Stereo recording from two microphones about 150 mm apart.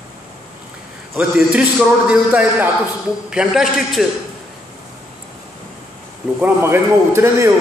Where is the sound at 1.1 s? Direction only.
5° right (ahead or behind).